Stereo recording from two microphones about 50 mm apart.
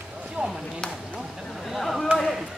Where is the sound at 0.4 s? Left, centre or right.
Right.